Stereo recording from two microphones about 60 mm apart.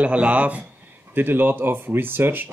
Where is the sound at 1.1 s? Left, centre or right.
Right.